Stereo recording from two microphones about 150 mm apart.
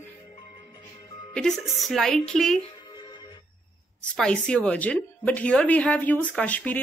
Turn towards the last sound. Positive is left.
turn(degrees=10)  # may be behind; listen again after turning